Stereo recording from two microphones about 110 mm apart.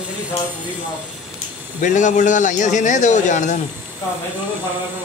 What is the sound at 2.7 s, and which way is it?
Speech, 90° left.